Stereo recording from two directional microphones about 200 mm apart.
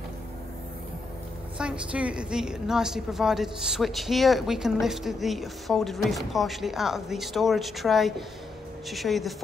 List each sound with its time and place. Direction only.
1.6 s a woman's voice: 5° right (ahead or behind)